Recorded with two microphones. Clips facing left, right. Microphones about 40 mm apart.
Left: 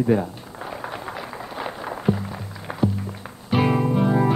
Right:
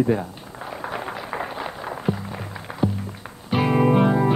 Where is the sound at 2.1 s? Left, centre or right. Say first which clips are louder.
Left 3 dB; centre.